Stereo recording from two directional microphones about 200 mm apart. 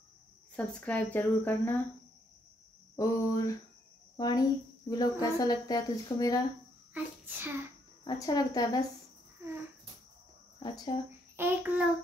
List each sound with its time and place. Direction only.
0.6 s speech: 5° left (ahead or behind)
3.0 s speech: 15° left (ahead or behind)
6.9 s child singing: 10° right (ahead or behind)
8.0 s speech: 20° left (ahead or behind)
9.4 s cricket: 10° right (ahead or behind)
10.9 s speech: 25° left (ahead or behind)
11.3 s child singing: 10° right (ahead or behind)